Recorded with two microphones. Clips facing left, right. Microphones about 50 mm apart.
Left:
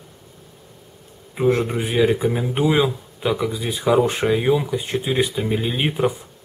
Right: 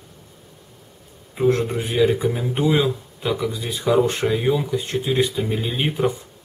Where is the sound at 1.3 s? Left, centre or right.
Centre.